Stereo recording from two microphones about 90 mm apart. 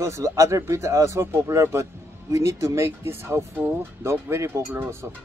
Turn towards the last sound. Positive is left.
turn(degrees=-25)  # may be behind; listen again after turning